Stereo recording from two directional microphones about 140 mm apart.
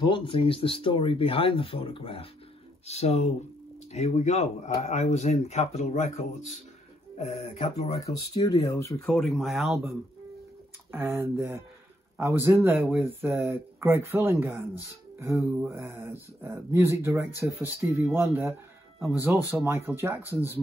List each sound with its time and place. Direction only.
0.0 s speech: 35° left (ahead or behind); by 6.6 s 55° left (ahead or behind)
7.6 s speech: 50° left (ahead or behind)
8.6 s speech: 20° left (ahead or behind)
9.0 s speech: 5° left (ahead or behind)
10.9 s speech: 15° right (ahead or behind)